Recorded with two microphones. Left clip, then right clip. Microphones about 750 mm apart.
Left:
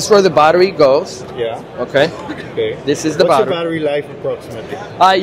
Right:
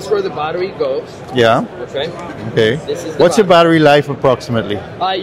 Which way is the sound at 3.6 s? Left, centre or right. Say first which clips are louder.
Right 9 dB; right.